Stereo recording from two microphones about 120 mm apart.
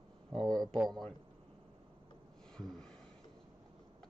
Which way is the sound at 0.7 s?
Centre (ahead or behind).